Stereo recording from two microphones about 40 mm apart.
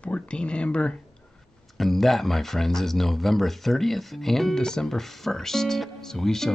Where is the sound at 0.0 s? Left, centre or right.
Left.